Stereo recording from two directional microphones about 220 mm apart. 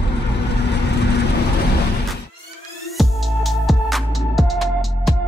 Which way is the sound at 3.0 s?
Centre (ahead or behind).